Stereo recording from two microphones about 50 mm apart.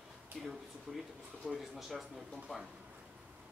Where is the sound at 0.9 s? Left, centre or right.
Centre.